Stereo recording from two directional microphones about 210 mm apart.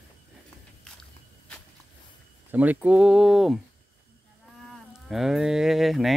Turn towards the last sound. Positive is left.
turn(degrees=0)  # may be behind; listen again after turning